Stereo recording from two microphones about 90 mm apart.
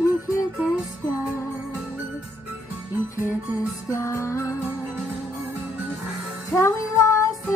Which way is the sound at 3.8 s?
35° left (ahead or behind).